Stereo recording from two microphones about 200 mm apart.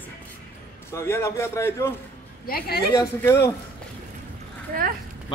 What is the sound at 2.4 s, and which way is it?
Speech, 50° left (ahead or behind).